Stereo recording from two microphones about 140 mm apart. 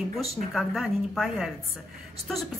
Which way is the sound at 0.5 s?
Centre (ahead or behind).